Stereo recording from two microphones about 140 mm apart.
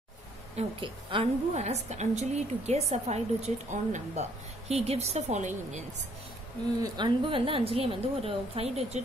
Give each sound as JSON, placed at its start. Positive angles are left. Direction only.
{"t": 0.6, "sound": "a woman's voice", "side_deg": -45}
{"t": 1.6, "sound": "a woman's voice", "side_deg": -55}
{"t": 6.8, "sound": "a woman's voice", "side_deg": -35}